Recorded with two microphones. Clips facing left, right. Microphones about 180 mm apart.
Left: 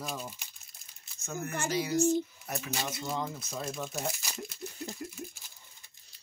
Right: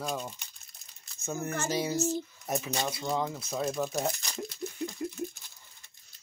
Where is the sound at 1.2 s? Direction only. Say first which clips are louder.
Right 2 dB; 20° right (ahead or behind).